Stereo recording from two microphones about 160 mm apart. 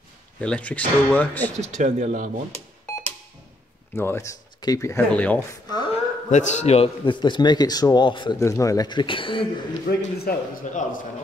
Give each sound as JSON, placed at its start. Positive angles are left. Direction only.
{"t": 0.4, "sound": "speech", "side_deg": 5}
{"t": 1.6, "sound": "speech", "side_deg": -50}
{"t": 3.9, "sound": "speech", "side_deg": 15}
{"t": 5.5, "sound": "a man's voice", "side_deg": 25}
{"t": 6.3, "sound": "a man's voice", "side_deg": 45}
{"t": 8.4, "sound": "a man's voice", "side_deg": 20}
{"t": 9.8, "sound": "a man's voice", "side_deg": 80}
{"t": 10.6, "sound": "a man's voice", "side_deg": 50}